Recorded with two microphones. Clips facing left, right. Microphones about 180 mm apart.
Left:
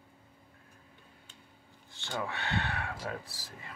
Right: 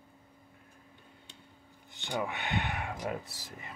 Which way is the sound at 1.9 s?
15° right (ahead or behind).